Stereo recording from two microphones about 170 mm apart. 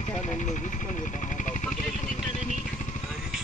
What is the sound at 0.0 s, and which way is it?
Vehicle, 45° left (ahead or behind).